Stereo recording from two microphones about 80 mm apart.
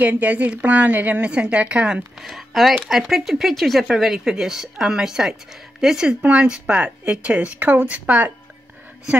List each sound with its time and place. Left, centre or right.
0.0 s speech: centre
2.2 s a woman's voice: centre